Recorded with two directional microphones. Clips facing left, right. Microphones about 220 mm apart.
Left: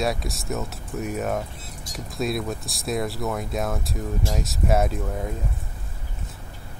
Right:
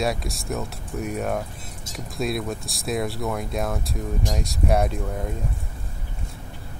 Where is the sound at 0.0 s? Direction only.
Centre (ahead or behind).